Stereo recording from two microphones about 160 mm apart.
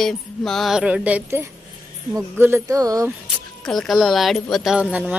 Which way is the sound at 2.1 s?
15° right (ahead or behind).